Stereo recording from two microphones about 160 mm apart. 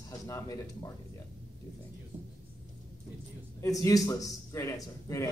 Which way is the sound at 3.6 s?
20° left (ahead or behind).